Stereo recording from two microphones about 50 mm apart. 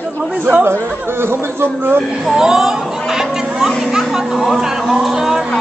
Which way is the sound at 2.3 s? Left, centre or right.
Centre.